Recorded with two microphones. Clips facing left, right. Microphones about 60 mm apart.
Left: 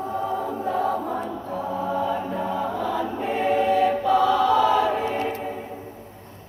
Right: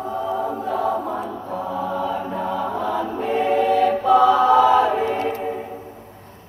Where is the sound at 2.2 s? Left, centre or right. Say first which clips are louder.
Right 2 dB; centre.